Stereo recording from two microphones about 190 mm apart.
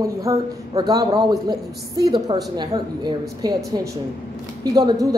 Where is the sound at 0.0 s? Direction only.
15° right (ahead or behind).